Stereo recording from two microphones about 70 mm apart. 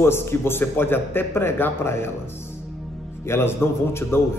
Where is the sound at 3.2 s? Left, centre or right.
Left.